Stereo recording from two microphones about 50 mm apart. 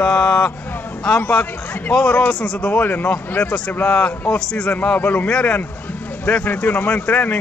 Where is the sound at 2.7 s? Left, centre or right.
Left.